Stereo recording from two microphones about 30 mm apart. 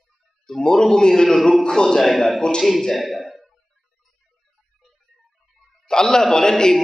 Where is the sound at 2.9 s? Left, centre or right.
Centre.